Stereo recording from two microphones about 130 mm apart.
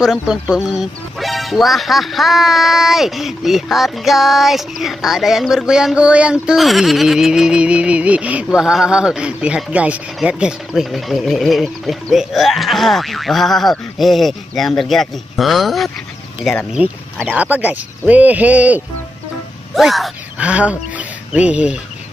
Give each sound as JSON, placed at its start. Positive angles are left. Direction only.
{"t": 0.0, "sound": "a sound", "side_deg": -5}
{"t": 17.4, "sound": "speech", "side_deg": -10}
{"t": 19.7, "sound": "speech", "side_deg": 0}